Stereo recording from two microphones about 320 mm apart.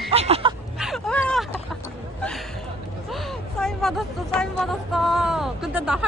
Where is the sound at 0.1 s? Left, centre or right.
Centre.